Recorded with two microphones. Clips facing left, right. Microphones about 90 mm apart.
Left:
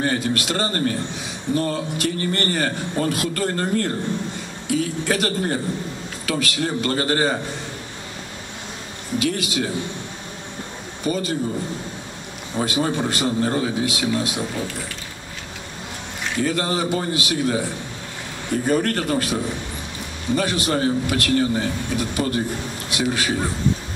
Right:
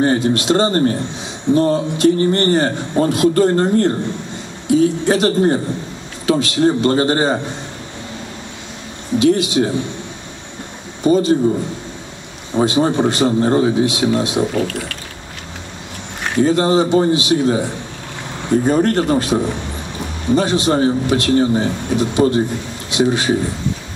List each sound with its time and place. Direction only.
0.0 s a man's voice: 25° right (ahead or behind)
9.2 s a man's voice: 25° right (ahead or behind)
11.1 s a man's voice: 25° right (ahead or behind)
12.5 s a man's voice: 25° right (ahead or behind)
14.5 s speech: 65° right (ahead or behind)
16.3 s a man's voice: 25° right (ahead or behind)